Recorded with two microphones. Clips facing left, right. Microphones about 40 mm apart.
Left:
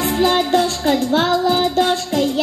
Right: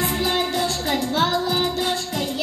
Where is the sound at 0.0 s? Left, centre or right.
Left.